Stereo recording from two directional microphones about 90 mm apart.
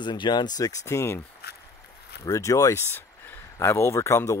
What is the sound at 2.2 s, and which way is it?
Speech, 35° left (ahead or behind).